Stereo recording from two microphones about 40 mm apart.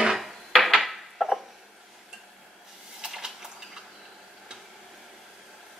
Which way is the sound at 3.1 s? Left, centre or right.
Centre.